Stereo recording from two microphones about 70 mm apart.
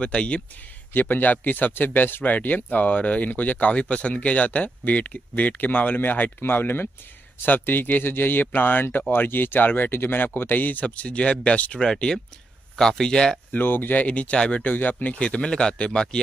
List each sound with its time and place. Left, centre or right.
0.0 s speech: centre
13.5 s speech: left
14.6 s speech: left